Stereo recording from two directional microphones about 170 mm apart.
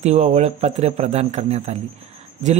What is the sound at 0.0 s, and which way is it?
Speech, 40° right (ahead or behind).